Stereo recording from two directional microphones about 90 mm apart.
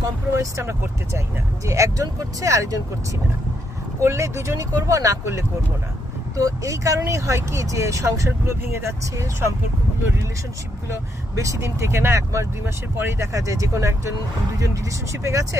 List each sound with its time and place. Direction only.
0.0 s speech: 35° right (ahead or behind)
4.0 s speech: 30° right (ahead or behind)
11.3 s speech: 35° right (ahead or behind)